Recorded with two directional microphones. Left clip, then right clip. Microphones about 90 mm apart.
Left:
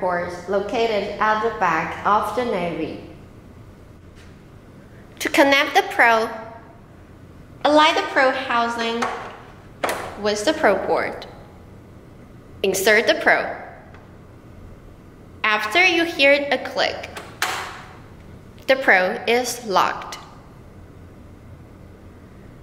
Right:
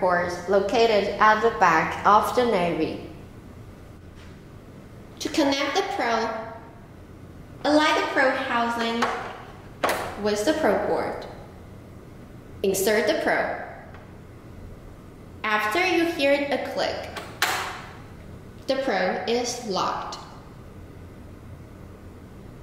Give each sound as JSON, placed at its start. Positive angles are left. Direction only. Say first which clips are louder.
{"t": 0.0, "sound": "a woman's voice", "louder": "right 1 dB", "side_deg": 0}
{"t": 5.2, "sound": "a woman's voice", "louder": "left 8 dB", "side_deg": 30}
{"t": 7.6, "sound": "a woman's voice", "louder": "left 5 dB", "side_deg": 20}
{"t": 9.8, "sound": "a sound", "louder": "even", "side_deg": 0}
{"t": 10.2, "sound": "a woman's voice", "louder": "left 4 dB", "side_deg": 10}
{"t": 12.5, "sound": "a woman's voice", "louder": "left 5 dB", "side_deg": 15}
{"t": 15.4, "sound": "a woman's voice", "louder": "left 6 dB", "side_deg": 15}
{"t": 17.4, "sound": "a sound", "louder": "even", "side_deg": 0}
{"t": 18.7, "sound": "a woman's voice", "louder": "left 8 dB", "side_deg": 30}